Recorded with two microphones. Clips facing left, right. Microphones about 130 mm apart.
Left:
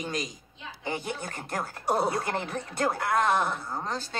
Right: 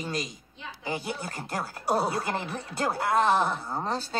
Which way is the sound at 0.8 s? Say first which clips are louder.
Even; 10° right (ahead or behind).